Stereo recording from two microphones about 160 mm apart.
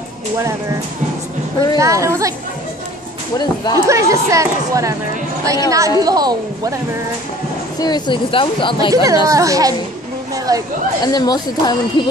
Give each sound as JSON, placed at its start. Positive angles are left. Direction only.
{"t": 1.8, "sound": "a woman's voice", "side_deg": -20}
{"t": 3.7, "sound": "a woman's voice", "side_deg": -20}
{"t": 7.8, "sound": "speech", "side_deg": 30}
{"t": 8.9, "sound": "a woman's voice", "side_deg": -20}
{"t": 10.3, "sound": "a sound", "side_deg": -20}
{"t": 11.1, "sound": "speech", "side_deg": 25}